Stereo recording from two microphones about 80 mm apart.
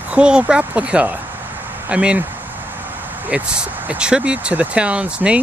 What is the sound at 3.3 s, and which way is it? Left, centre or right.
Speech, centre.